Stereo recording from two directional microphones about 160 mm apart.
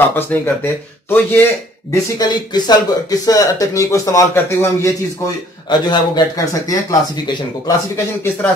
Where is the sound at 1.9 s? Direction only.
25° left (ahead or behind).